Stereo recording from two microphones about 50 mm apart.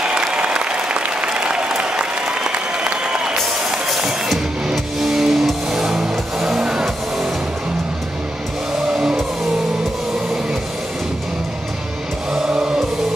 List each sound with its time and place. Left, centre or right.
0.0 s applause: centre
3.7 s music: centre
8.8 s vehicle: centre
12.3 s music: centre